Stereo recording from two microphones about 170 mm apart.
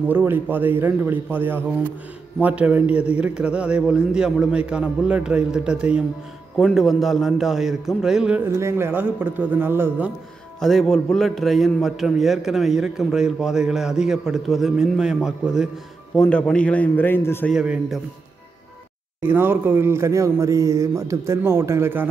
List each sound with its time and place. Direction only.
0.1 s a man's voice: 10° right (ahead or behind)
8.5 s speech: 15° right (ahead or behind)
10.6 s a man's voice: 5° left (ahead or behind)
17.5 s a man's voice: centre (ahead or behind)
19.2 s speech: 10° right (ahead or behind)